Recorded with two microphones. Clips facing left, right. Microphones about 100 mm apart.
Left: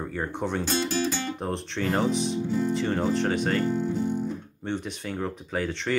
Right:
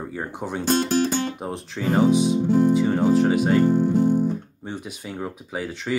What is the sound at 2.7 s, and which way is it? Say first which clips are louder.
Speech: right 7 dB; 5° right (ahead or behind).